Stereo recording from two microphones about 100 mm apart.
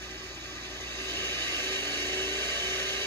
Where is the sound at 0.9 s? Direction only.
25° left (ahead or behind).